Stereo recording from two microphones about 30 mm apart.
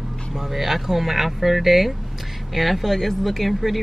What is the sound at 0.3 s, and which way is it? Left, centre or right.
Speech, centre.